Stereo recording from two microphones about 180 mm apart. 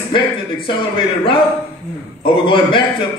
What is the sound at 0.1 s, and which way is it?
A man's voice, 25° left (ahead or behind).